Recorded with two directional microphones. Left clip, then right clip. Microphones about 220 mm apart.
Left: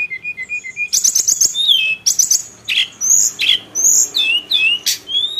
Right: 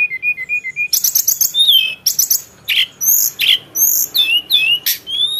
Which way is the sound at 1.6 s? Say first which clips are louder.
Even; 15° right (ahead or behind).